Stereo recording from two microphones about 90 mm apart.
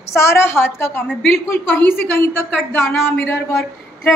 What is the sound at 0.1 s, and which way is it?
A woman's voice, 30° left (ahead or behind).